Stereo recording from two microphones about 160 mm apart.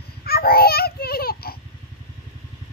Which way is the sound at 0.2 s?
70° left (ahead or behind).